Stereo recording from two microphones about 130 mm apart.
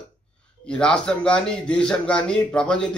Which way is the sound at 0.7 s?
5° left (ahead or behind).